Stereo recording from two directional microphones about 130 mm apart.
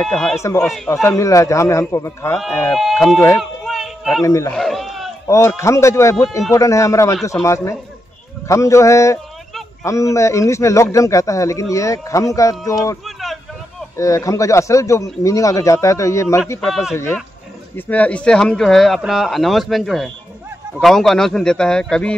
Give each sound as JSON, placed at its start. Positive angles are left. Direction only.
{"t": 0.0, "sound": "speech", "side_deg": 5}
{"t": 1.0, "sound": "a man's voice", "side_deg": 25}
{"t": 2.7, "sound": "speech", "side_deg": 0}
{"t": 3.3, "sound": "a sound", "side_deg": 0}
{"t": 4.2, "sound": "a man's voice", "side_deg": 25}
{"t": 4.5, "sound": "a sound", "side_deg": 0}
{"t": 5.2, "sound": "a man's voice", "side_deg": 20}
{"t": 13.0, "sound": "a sound", "side_deg": 0}
{"t": 13.9, "sound": "a man's voice", "side_deg": 25}
{"t": 16.6, "sound": "speech", "side_deg": 0}